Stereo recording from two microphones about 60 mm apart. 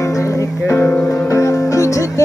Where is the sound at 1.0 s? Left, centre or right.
Left.